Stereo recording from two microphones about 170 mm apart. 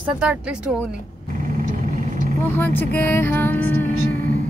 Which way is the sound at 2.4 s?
10° left (ahead or behind).